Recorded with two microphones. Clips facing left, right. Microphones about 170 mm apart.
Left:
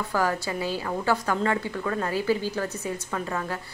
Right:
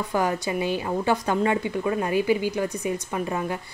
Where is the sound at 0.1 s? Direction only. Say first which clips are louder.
Right 2 dB; 20° right (ahead or behind).